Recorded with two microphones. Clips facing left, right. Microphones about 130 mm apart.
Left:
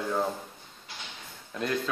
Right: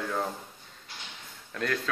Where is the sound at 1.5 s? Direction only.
15° left (ahead or behind).